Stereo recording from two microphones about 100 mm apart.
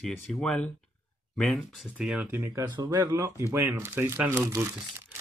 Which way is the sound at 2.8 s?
35° right (ahead or behind).